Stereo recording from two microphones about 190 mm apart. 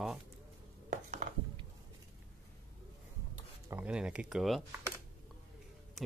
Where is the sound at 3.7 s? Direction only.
5° right (ahead or behind).